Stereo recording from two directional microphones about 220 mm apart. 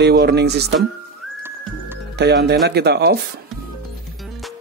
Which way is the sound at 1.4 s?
10° right (ahead or behind).